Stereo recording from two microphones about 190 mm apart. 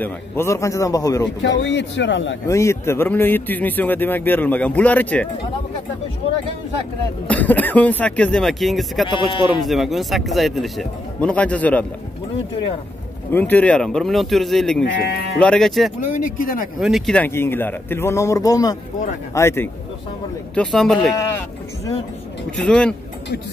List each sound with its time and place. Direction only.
0.0 s speech: 15° left (ahead or behind)
1.6 s speech: 70° left (ahead or behind)
2.4 s speech: 15° left (ahead or behind)
7.2 s speech: 10° left (ahead or behind)
9.3 s speech: 25° left (ahead or behind)
9.7 s speech: centre (ahead or behind)
13.3 s speech: 10° left (ahead or behind)
14.9 s speech: 55° left (ahead or behind)
15.3 s speech: 5° left (ahead or behind)
16.2 s speech: 45° left (ahead or behind)
16.8 s speech: centre (ahead or behind)
20.5 s speech: centre (ahead or behind)
21.2 s speech: 15° left (ahead or behind)